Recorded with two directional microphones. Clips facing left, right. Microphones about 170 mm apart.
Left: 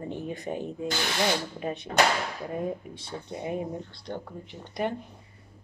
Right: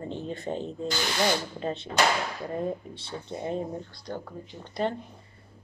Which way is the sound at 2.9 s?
10° left (ahead or behind).